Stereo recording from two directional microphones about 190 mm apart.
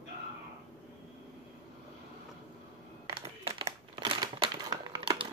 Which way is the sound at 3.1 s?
30° right (ahead or behind).